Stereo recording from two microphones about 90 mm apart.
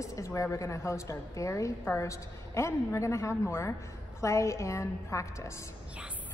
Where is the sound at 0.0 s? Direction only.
35° left (ahead or behind).